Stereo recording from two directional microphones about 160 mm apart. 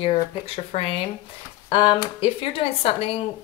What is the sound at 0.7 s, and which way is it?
Speech, 40° left (ahead or behind).